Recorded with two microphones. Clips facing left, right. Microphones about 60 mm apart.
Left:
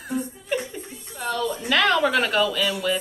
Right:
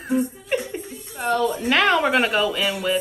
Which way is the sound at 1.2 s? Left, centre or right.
Right.